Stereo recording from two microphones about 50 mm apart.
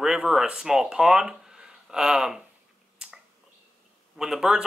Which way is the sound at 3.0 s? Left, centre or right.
Centre.